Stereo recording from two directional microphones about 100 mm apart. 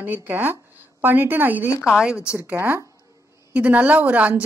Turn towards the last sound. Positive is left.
turn(degrees=-15)  # may be behind; listen again after turning